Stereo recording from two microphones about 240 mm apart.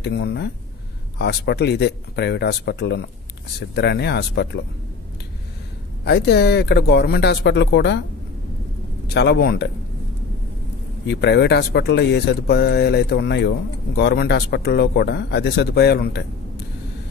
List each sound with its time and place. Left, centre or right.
0.0 s speech: left
6.0 s speech: left
9.1 s speech: left
11.1 s speech: left